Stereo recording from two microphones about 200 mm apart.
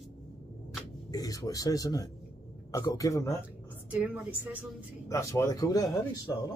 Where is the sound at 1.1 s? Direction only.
20° left (ahead or behind).